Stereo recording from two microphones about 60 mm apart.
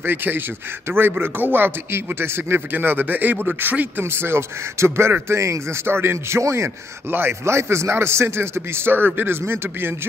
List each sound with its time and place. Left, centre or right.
0.0 s a man's voice: right
4.0 s a man's voice: right